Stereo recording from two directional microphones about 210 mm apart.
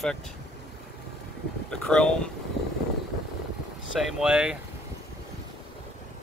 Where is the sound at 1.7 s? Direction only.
5° left (ahead or behind).